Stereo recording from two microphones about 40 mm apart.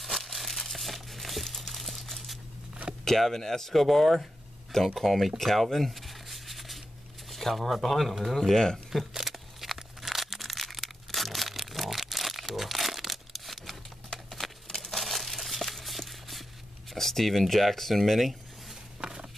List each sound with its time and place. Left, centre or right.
0.0 s crumpling: centre
3.1 s speech: centre
3.7 s speech: centre
5.4 s a sound: centre
7.2 s speech: centre
8.4 s speech: centre
9.1 s a sound: centre
14.3 s crumpling: centre
16.9 s speech: centre
18.9 s a sound: centre